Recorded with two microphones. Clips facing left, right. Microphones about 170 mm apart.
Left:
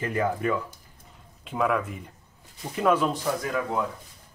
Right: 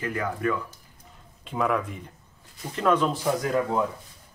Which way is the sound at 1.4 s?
Centre (ahead or behind).